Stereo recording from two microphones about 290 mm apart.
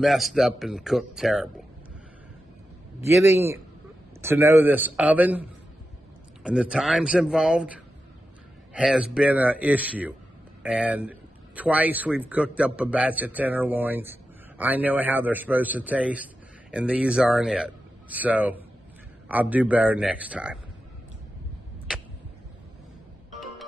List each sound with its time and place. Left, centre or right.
0.0 s speech: centre
3.1 s a man's voice: centre